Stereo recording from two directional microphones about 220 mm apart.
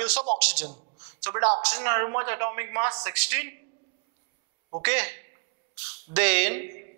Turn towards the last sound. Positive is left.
turn(degrees=-15)  # may be behind; listen again after turning